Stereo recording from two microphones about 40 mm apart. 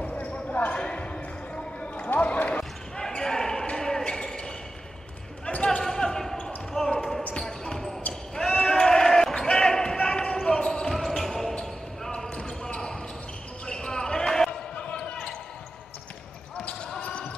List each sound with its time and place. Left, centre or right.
0.0 s basketball bounce: left
0.7 s a sound: left
2.1 s basketball bounce: left
3.2 s basketball bounce: centre
5.5 s basketball bounce: left
5.8 s basketball bounce: centre
10.9 s basketball bounce: centre
12.4 s basketball bounce: centre
14.8 s basketball bounce: left
17.0 s basketball bounce: left